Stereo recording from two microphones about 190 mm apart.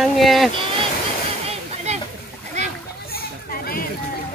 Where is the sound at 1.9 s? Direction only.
35° right (ahead or behind).